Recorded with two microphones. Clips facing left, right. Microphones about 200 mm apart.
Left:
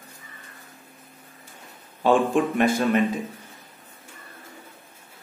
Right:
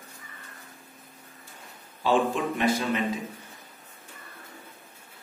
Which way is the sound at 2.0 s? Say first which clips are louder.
Left 5 dB; 55° left (ahead or behind).